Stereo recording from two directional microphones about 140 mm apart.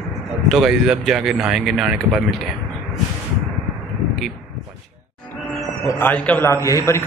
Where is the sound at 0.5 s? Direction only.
5° right (ahead or behind).